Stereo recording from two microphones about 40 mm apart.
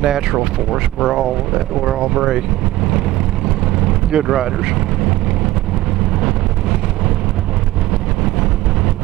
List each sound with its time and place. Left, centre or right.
0.0 s speech: centre
3.4 s vehicle: centre